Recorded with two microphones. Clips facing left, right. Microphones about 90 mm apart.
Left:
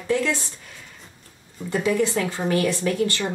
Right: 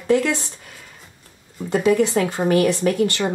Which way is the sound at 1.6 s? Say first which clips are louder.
Right 4 dB; 20° right (ahead or behind).